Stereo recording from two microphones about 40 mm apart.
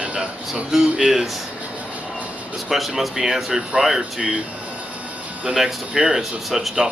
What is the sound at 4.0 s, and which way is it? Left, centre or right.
Speech, right.